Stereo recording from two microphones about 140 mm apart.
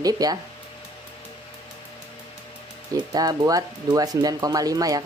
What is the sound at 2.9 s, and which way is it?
Speech, 25° right (ahead or behind).